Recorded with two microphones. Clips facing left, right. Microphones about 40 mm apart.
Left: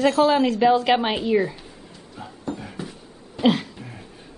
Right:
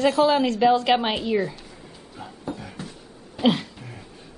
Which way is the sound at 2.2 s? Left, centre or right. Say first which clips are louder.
Left 2 dB; centre.